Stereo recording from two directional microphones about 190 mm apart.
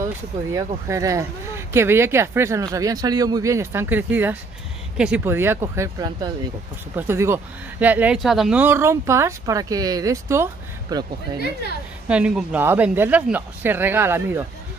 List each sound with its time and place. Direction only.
0.0 s speech: 15° right (ahead or behind)
12.1 s speech: 5° right (ahead or behind)